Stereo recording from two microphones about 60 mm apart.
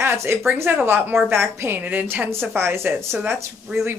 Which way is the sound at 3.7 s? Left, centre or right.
Centre.